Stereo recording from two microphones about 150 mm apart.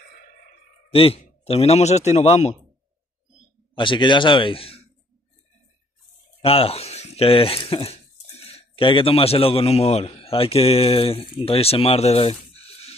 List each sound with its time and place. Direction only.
0.8 s a man's voice: 40° left (ahead or behind)
3.7 s a man's voice: 35° left (ahead or behind)
6.4 s speech: 40° left (ahead or behind)